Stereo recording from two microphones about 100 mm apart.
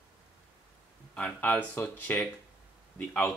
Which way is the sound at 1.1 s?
15° left (ahead or behind).